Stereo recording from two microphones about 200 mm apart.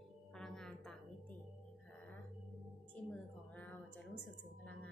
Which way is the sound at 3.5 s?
5° left (ahead or behind).